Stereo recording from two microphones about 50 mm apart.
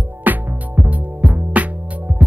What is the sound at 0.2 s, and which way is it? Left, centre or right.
Music, right.